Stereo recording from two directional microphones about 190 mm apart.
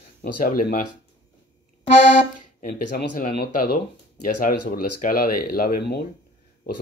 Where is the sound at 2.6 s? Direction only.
45° left (ahead or behind).